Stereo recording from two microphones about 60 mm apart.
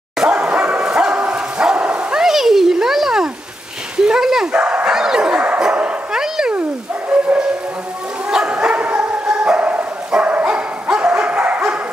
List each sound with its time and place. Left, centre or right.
0.2 s dog: centre
2.2 s a sound: centre
4.5 s dog: right
4.9 s bow-wow: centre
5.6 s dog: centre
7.1 s bow-wow: right
8.3 s dog: centre
10.2 s bow-wow: right